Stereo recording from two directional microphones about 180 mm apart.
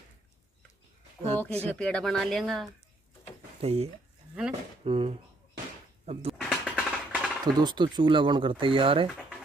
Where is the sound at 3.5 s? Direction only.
35° right (ahead or behind).